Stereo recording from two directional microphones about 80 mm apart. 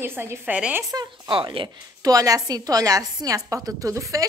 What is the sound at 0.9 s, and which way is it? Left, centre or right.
Speech, right.